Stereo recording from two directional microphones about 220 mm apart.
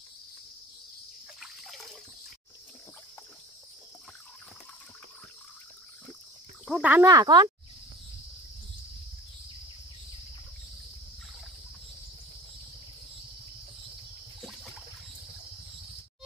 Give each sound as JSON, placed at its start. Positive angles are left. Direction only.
{"t": 1.4, "sound": "water", "side_deg": 0}
{"t": 6.6, "sound": "speech", "side_deg": -5}